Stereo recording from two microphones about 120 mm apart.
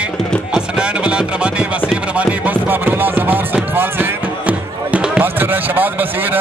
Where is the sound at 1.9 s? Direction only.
10° right (ahead or behind).